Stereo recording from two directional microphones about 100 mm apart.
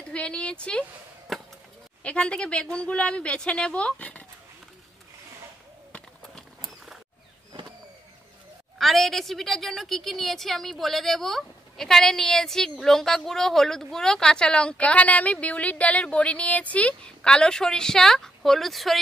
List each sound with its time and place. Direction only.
0.1 s a woman's voice: 10° left (ahead or behind)
1.3 s chop: centre (ahead or behind)
2.0 s a woman's voice: 10° left (ahead or behind)
5.9 s clip-clop: 5° left (ahead or behind)
8.7 s a woman's voice: centre (ahead or behind)